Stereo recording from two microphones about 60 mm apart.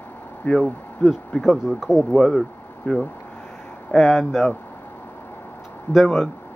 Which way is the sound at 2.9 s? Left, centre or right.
Left.